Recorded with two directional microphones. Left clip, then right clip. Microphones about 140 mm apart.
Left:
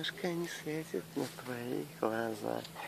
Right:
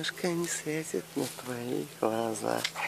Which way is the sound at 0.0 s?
15° right (ahead or behind).